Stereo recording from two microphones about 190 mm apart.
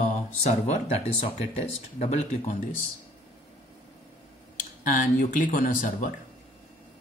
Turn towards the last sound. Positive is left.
turn(degrees=45)  # may be behind; listen again after turning